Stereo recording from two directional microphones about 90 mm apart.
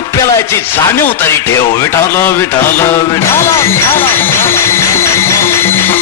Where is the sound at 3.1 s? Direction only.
30° left (ahead or behind).